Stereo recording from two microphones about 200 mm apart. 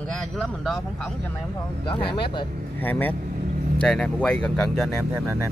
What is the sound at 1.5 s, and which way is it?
Speech, 25° left (ahead or behind).